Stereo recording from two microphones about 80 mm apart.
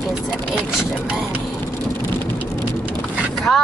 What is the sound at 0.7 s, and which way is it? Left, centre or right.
Speech, centre.